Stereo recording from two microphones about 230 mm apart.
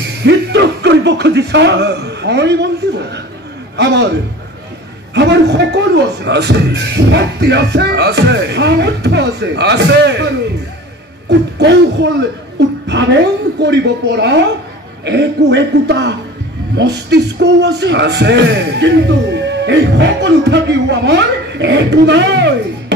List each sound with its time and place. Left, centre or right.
0.2 s a man's voice: right